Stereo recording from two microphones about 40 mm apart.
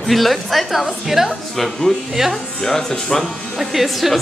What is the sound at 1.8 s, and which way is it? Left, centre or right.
A woman's voice, centre.